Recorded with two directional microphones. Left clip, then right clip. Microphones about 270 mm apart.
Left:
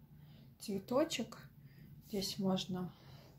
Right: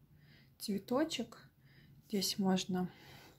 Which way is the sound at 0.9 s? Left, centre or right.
Centre.